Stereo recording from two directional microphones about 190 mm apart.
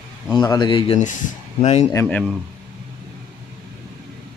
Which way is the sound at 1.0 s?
40° left (ahead or behind).